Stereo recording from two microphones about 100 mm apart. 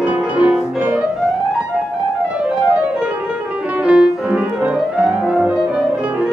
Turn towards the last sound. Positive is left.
turn(degrees=-10)  # may be behind; listen again after turning